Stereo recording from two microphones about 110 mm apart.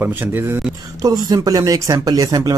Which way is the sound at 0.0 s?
15° right (ahead or behind).